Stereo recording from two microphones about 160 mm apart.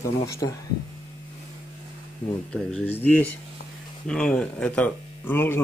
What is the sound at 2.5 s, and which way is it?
Speech, 5° left (ahead or behind).